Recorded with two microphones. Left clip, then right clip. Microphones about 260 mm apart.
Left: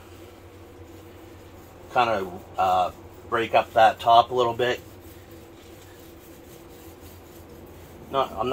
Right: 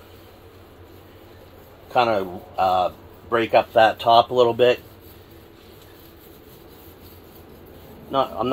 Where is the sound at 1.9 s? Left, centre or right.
Right.